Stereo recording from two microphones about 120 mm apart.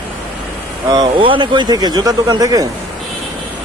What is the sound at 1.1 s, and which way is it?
Speech, 45° right (ahead or behind).